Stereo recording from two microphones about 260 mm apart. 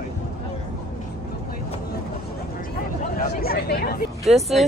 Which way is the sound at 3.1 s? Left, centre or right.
Left.